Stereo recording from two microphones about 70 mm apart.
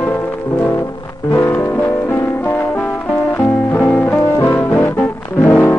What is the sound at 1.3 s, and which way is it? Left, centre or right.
Music, left.